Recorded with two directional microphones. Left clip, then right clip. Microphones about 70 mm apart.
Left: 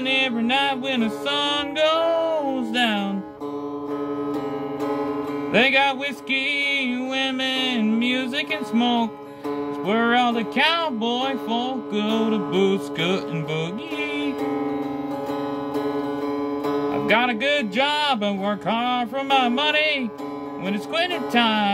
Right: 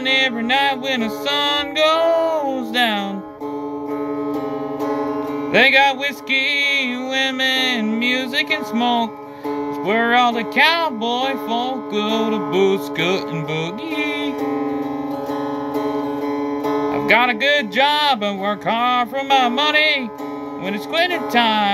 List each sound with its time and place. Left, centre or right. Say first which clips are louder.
0.0 s music: right 4 dB; left
5.5 s music: right 5 dB; left
16.9 s music: right 5 dB; left